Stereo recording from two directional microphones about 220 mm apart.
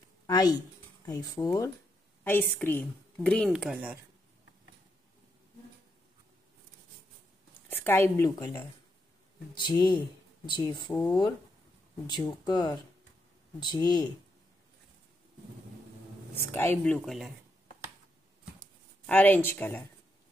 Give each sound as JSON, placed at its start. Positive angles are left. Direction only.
{"t": 0.3, "sound": "speech", "side_deg": 15}
{"t": 7.7, "sound": "speech", "side_deg": 10}
{"t": 16.5, "sound": "speech", "side_deg": 10}
{"t": 19.0, "sound": "speech", "side_deg": 10}